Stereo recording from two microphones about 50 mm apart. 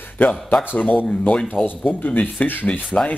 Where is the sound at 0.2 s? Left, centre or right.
Left.